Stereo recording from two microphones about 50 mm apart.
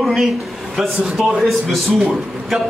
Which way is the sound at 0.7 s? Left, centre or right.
Centre.